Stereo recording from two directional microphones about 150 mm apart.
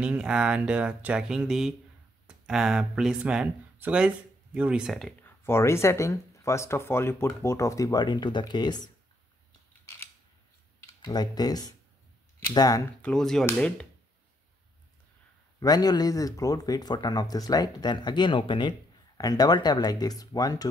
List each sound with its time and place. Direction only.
0.0 s speech: 5° right (ahead or behind)
5.2 s speech: 15° left (ahead or behind)
10.8 s speech: 25° left (ahead or behind)
13.0 s speech: 5° left (ahead or behind)
15.6 s speech: 25° left (ahead or behind)